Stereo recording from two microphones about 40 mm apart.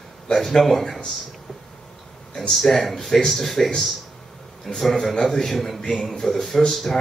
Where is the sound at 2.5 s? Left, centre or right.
Centre.